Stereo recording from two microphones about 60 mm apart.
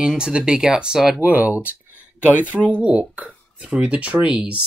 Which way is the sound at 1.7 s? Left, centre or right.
Right.